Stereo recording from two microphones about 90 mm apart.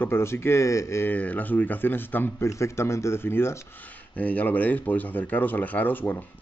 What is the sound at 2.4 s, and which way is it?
Speech, 30° left (ahead or behind).